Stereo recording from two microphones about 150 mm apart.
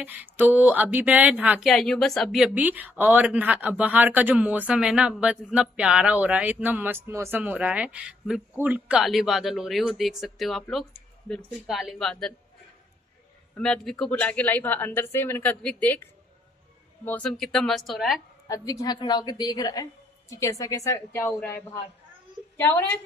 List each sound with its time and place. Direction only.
0.0 s speech: 10° right (ahead or behind)
1.7 s a woman's voice: centre (ahead or behind)
2.5 s a woman's voice: 10° right (ahead or behind); by 12.4 s 5° left (ahead or behind)
13.6 s a woman's voice: 5° left (ahead or behind)
18.5 s a woman's voice: 25° left (ahead or behind)